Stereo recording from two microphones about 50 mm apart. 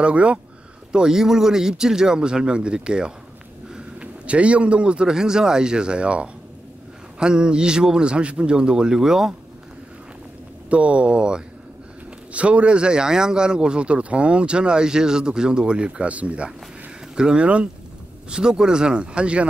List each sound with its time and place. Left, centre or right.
0.0 s speech: right
0.9 s a man's voice: centre
10.7 s speech: right